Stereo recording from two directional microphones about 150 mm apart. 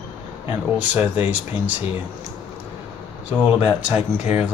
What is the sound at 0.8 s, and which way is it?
Speech, 10° right (ahead or behind).